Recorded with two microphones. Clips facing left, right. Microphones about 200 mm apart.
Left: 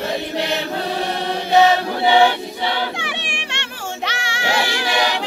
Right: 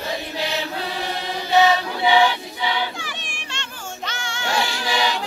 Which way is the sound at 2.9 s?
70° left (ahead or behind).